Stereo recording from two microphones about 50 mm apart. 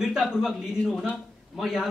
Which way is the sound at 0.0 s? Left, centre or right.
Centre.